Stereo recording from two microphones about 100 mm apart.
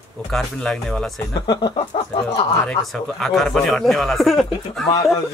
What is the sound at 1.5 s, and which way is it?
Speech, 45° left (ahead or behind).